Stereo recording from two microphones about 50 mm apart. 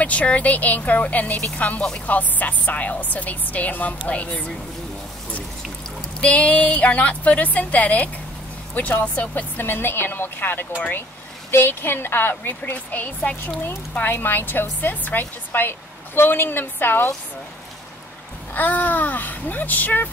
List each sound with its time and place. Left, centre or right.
0.0 s a woman's voice: left
6.2 s a woman's voice: left
9.6 s speech: left
12.7 s speech: left
13.6 s speech: left
18.5 s speech: left